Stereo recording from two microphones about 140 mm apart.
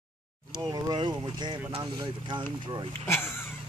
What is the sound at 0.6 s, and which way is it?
Speech, 30° right (ahead or behind).